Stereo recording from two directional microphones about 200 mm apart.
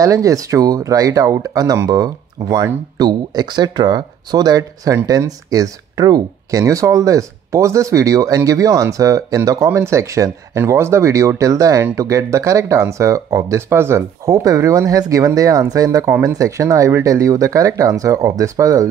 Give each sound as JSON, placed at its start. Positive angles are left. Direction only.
{"t": 0.0, "sound": "speech", "side_deg": -15}